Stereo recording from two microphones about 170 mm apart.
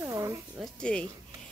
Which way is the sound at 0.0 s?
20° right (ahead or behind).